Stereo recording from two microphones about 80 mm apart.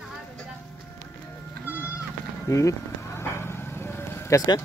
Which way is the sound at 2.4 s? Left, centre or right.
Left.